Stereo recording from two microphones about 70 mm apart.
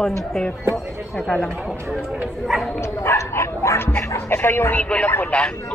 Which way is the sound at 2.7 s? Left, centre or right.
Left.